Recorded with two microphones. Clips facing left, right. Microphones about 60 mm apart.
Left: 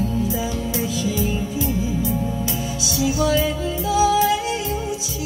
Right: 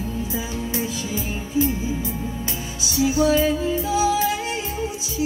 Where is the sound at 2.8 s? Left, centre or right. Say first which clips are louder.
Right 2 dB; right.